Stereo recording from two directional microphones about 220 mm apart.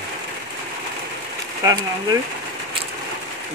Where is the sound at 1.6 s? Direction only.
15° right (ahead or behind).